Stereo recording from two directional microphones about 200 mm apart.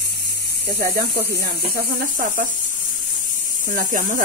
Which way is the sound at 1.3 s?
50° right (ahead or behind).